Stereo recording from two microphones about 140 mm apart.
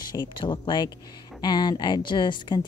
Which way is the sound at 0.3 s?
35° left (ahead or behind).